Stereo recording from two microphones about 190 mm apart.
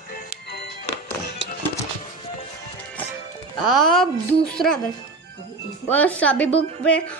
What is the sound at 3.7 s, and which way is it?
Speech, centre (ahead or behind).